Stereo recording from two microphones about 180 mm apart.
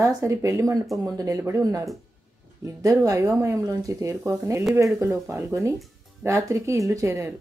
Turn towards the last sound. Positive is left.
turn(degrees=-15)  # may be behind; listen again after turning